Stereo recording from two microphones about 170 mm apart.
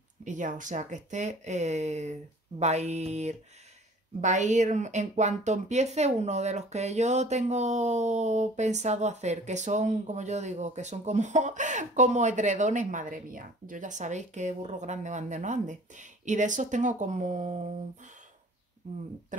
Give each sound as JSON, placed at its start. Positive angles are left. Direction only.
{"t": 0.2, "sound": "a woman's voice", "side_deg": -45}
{"t": 2.6, "sound": "a sound", "side_deg": -40}
{"t": 4.2, "sound": "a woman's voice", "side_deg": -45}
{"t": 18.8, "sound": "a woman's voice", "side_deg": -45}